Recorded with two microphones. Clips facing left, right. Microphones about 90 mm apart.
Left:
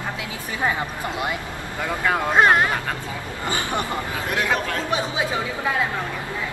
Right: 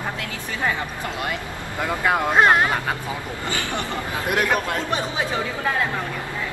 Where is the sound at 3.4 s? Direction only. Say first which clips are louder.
Left 3 dB; 20° left (ahead or behind).